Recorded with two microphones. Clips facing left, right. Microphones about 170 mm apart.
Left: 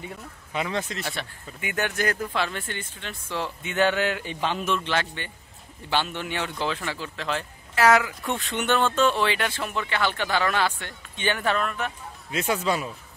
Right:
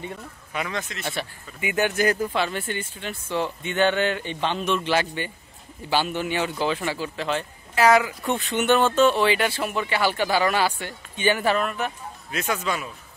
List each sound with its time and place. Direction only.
0.5 s speech: 25° left (ahead or behind)
1.0 s speech: 5° right (ahead or behind)
4.8 s speech: 10° right (ahead or behind)
12.3 s speech: 25° left (ahead or behind)